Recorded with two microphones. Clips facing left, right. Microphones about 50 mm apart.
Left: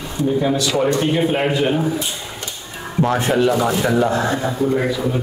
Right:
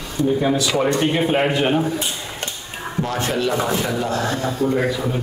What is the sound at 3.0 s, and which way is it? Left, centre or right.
A man's voice, left.